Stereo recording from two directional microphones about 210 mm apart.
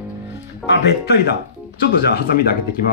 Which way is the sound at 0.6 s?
55° left (ahead or behind).